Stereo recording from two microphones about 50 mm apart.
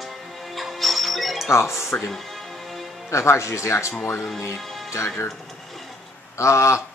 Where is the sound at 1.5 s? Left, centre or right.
Left.